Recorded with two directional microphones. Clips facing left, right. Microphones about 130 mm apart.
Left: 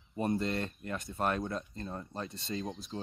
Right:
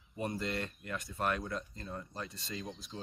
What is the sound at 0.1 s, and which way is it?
Speech, 30° left (ahead or behind).